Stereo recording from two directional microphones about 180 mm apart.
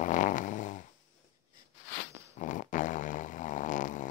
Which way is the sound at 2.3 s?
45° left (ahead or behind).